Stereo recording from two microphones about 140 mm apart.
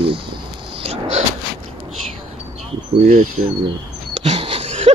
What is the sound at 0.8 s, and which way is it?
Vehicle, 50° right (ahead or behind).